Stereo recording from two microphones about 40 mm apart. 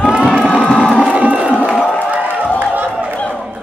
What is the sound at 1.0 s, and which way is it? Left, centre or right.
Crowd, right.